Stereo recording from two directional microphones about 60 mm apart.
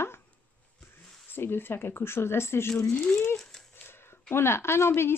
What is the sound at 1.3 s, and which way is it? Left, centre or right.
A woman's voice, left.